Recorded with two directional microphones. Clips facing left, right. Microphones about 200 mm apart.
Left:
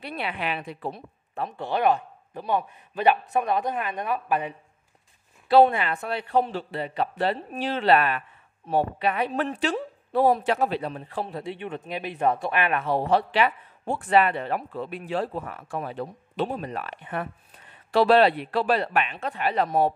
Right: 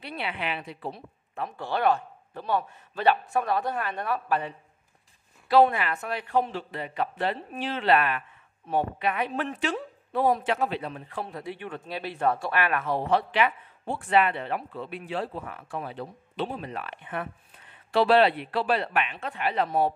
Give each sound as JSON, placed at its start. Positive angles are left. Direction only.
{"t": 0.0, "sound": "a woman's voice", "side_deg": 45}
{"t": 1.6, "sound": "a man's voice", "side_deg": 20}
{"t": 5.5, "sound": "a woman's voice", "side_deg": 30}